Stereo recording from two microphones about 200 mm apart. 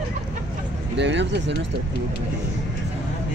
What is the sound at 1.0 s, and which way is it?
Speech, 60° right (ahead or behind).